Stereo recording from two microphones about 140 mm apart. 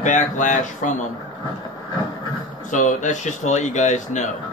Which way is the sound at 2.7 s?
65° left (ahead or behind).